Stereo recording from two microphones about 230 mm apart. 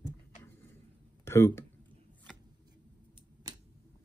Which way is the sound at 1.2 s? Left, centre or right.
Centre.